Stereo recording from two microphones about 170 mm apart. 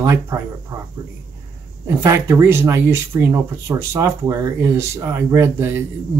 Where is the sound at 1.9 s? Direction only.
15° right (ahead or behind).